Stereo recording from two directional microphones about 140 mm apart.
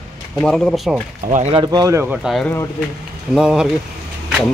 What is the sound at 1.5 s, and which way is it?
Speech, 35° right (ahead or behind).